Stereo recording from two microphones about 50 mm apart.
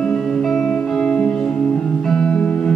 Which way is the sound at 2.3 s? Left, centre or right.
Left.